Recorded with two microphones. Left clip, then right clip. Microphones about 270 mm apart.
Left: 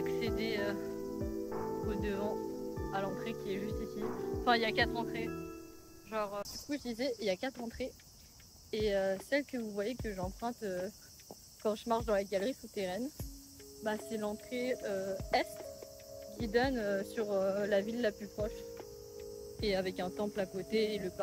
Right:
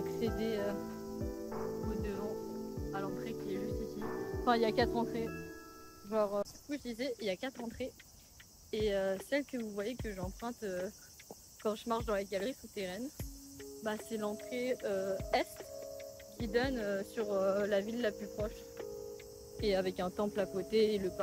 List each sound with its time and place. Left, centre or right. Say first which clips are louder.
0.0 s music: left 1 dB; centre
1.2 s music: even; centre
6.0 s speech: right 4 dB; centre
6.7 s speech: left 2 dB; centre